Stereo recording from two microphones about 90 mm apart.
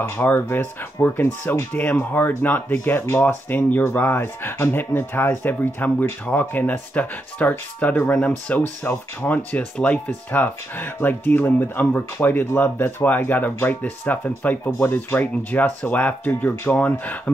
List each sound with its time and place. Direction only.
0.1 s speech: 25° left (ahead or behind)
9.5 s speech: 15° left (ahead or behind)